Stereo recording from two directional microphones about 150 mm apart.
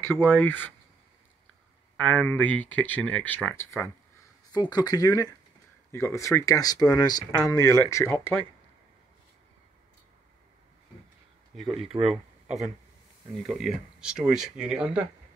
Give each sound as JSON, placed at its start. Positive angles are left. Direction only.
{"t": 0.3, "sound": "speech", "side_deg": 10}
{"t": 2.0, "sound": "speech", "side_deg": 10}
{"t": 4.5, "sound": "speech", "side_deg": 25}
{"t": 11.8, "sound": "speech", "side_deg": -40}
{"t": 13.5, "sound": "speech", "side_deg": 0}